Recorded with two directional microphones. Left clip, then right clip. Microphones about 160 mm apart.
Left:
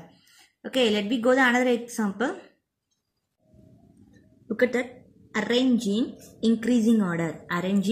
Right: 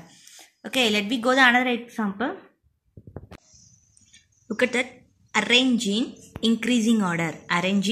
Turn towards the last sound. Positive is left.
turn(degrees=-20)  # may be behind; listen again after turning